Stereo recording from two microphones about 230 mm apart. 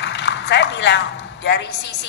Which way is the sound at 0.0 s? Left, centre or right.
Left.